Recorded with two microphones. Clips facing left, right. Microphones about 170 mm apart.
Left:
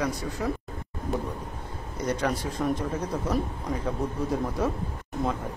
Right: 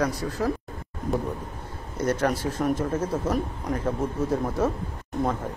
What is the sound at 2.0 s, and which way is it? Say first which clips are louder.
Speech: right 4 dB; 15° left (ahead or behind).